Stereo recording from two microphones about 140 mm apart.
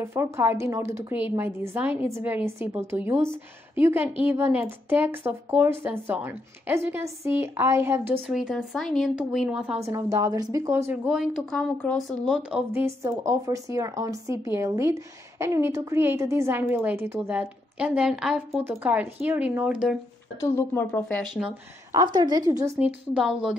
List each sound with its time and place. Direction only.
0.0 s a woman's voice: 15° right (ahead or behind)
8.3 s a woman's voice: 5° right (ahead or behind)
9.8 s a woman's voice: 20° right (ahead or behind)
11.1 s a woman's voice: 5° right (ahead or behind)
11.5 s speech: 10° left (ahead or behind)
12.3 s a woman's voice: 5° right (ahead or behind)
12.8 s a woman's voice: 20° right (ahead or behind); by 20.0 s 5° right (ahead or behind)
20.3 s speech: 20° left (ahead or behind)
21.2 s a woman's voice: 5° right (ahead or behind)
21.9 s a woman's voice: 30° right (ahead or behind)
22.8 s a woman's voice: 10° right (ahead or behind)